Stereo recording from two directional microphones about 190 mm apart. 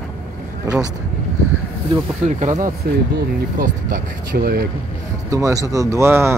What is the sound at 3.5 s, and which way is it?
Speech, 45° right (ahead or behind).